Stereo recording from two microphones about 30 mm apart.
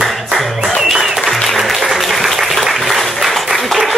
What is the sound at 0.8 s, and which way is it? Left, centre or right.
Applause, centre.